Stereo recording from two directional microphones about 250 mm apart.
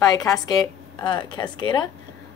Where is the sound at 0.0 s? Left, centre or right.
Centre.